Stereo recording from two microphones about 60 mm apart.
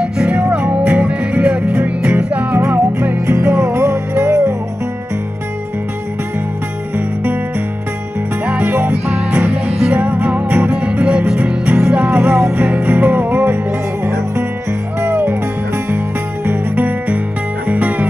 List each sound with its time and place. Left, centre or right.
0.0 s music: centre; by 3.2 s right
3.3 s music: right
8.6 s music: right
15.0 s music: right
16.4 s music: right